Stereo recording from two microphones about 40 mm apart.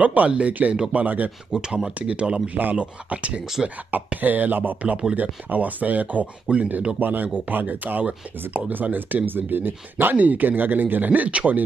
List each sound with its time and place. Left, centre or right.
0.0 s speech: right
0.9 s speech: right
1.5 s speech: centre
2.0 s speech: right
3.9 s speech: right
7.0 s speech: right
10.1 s speech: right